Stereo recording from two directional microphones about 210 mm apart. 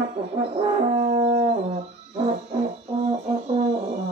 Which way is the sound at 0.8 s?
30° right (ahead or behind).